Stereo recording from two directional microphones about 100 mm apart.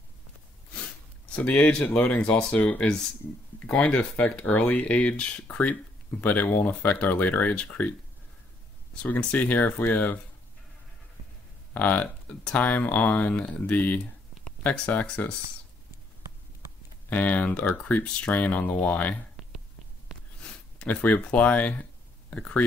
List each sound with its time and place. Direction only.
1.3 s speech: 15° left (ahead or behind)
9.0 s speech: 15° left (ahead or behind)
11.7 s speech: 15° left (ahead or behind)
17.1 s speech: 15° left (ahead or behind)
20.8 s speech: 15° left (ahead or behind)